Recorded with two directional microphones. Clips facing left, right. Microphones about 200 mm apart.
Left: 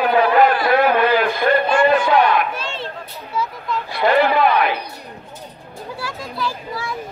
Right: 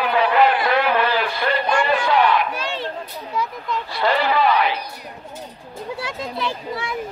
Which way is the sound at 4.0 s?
55° left (ahead or behind).